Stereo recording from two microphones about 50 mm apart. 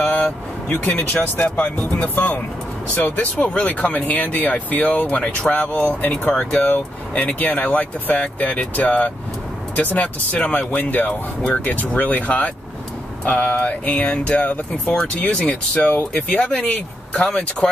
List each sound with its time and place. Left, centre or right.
0.1 s speech: left